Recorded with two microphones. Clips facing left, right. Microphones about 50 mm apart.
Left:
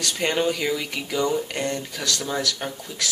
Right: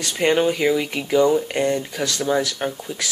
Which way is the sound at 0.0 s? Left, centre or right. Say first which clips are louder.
Right 5 dB; centre.